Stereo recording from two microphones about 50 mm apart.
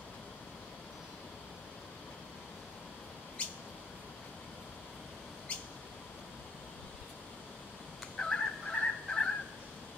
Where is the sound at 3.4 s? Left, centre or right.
Left.